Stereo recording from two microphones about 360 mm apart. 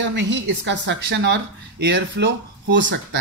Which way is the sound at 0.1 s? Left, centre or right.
Right.